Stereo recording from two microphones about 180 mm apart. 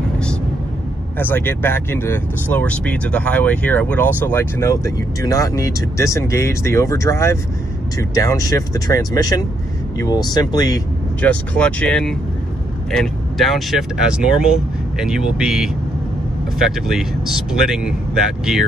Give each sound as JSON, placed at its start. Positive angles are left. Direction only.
{"t": 1.1, "sound": "speech", "side_deg": 10}
{"t": 11.1, "sound": "speech", "side_deg": 10}